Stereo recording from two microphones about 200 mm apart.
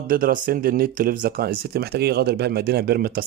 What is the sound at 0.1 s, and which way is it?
Speech, 45° right (ahead or behind).